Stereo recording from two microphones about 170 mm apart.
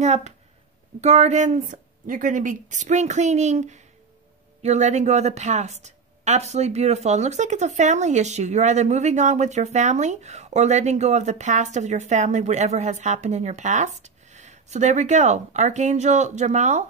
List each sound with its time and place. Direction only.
0.0 s a woman's voice: 40° right (ahead or behind)